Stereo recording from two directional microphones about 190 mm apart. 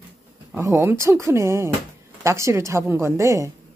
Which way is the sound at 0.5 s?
15° right (ahead or behind).